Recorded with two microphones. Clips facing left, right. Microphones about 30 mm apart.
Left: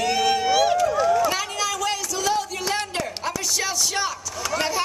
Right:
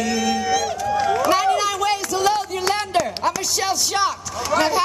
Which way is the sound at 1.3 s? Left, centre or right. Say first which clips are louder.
Right 7 dB; right.